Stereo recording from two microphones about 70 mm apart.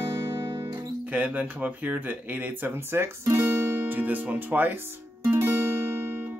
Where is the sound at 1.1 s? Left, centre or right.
Right.